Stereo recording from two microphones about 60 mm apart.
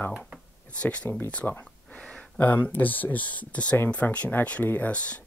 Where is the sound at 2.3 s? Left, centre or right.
Left.